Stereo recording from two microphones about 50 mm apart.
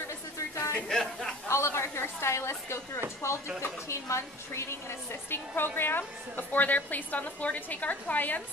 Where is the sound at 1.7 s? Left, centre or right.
Left.